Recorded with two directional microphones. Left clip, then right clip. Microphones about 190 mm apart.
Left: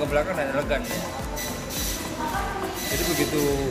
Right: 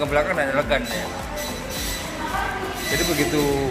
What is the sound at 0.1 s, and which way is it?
Speech, 25° right (ahead or behind).